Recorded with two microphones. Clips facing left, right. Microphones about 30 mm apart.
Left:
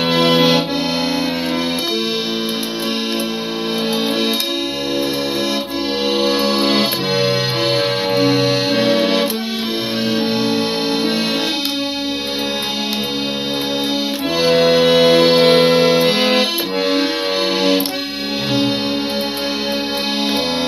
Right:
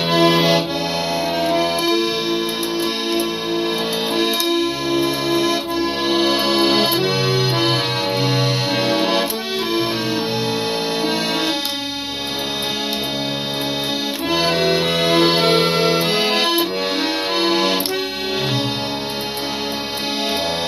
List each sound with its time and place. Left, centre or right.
0.3 s accordion: left
8.4 s accordion: left
8.9 s accordion: centre
14.8 s music: left
15.0 s music: left